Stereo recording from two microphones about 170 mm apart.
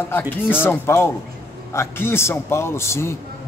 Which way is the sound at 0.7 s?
15° left (ahead or behind).